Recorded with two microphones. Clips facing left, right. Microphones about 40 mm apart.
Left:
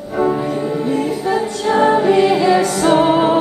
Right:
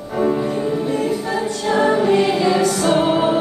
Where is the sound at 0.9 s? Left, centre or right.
Centre.